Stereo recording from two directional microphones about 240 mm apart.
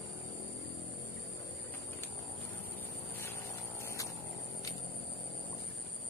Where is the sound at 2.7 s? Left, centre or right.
Centre.